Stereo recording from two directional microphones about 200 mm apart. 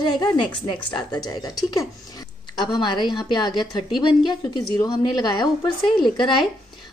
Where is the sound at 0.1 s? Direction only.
20° left (ahead or behind).